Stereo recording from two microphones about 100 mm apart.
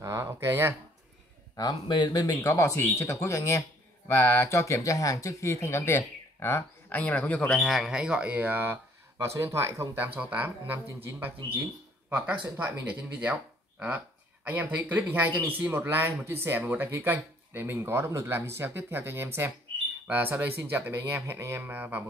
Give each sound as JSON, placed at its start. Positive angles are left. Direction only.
{"t": 0.0, "sound": "a sound", "side_deg": -25}
{"t": 1.6, "sound": "speech", "side_deg": 45}
{"t": 2.4, "sound": "a man's voice", "side_deg": 30}
{"t": 7.6, "sound": "speech", "side_deg": 0}
{"t": 9.2, "sound": "speech", "side_deg": -30}